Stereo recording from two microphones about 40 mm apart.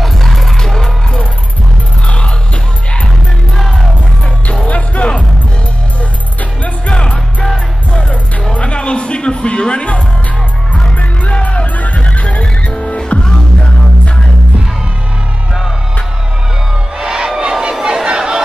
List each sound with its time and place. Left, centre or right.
0.0 s music: centre
0.6 s music: centre
4.5 s music: left
6.6 s music: left
17.0 s music: centre
17.4 s chatter: right